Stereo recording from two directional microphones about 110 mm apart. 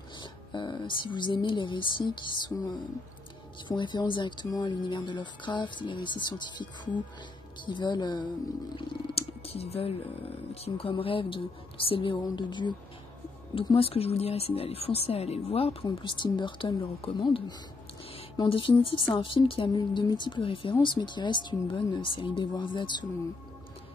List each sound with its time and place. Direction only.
0.2 s speech: 45° left (ahead or behind)
8.7 s speech: 65° left (ahead or behind); by 12.7 s 45° left (ahead or behind)
13.6 s speech: 55° left (ahead or behind)
18.5 s speech: 60° left (ahead or behind)